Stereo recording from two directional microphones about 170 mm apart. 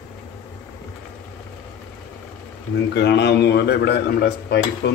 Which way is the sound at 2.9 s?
85° left.